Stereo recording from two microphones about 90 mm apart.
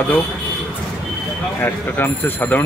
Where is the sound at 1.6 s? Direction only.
20° left (ahead or behind).